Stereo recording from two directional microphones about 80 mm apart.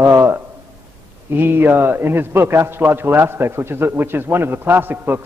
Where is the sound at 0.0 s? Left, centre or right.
Right.